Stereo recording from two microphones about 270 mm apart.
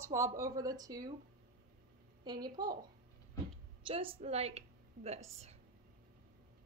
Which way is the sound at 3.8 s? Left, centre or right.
Centre.